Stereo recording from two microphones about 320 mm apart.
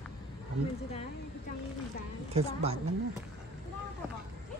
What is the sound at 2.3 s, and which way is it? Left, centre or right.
Speech, centre.